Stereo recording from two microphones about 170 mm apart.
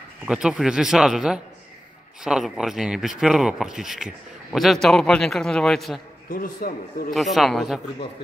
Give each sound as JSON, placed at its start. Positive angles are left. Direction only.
{"t": 0.2, "sound": "speech", "side_deg": -5}
{"t": 6.3, "sound": "a man's voice", "side_deg": 55}
{"t": 7.2, "sound": "speech", "side_deg": 0}